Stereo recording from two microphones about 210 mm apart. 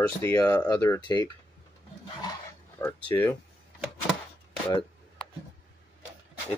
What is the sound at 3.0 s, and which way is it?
Speech, 10° left (ahead or behind).